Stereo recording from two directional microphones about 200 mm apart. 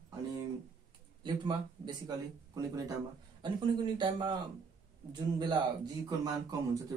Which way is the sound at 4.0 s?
25° right (ahead or behind).